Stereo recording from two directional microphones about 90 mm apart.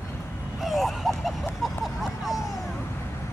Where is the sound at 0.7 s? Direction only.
Centre (ahead or behind).